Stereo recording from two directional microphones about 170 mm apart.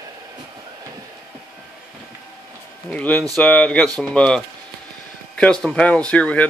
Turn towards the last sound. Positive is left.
turn(degrees=5)  # may be behind; listen again after turning